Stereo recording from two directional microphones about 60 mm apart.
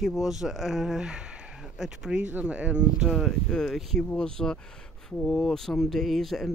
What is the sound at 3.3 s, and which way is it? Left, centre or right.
Speech, centre.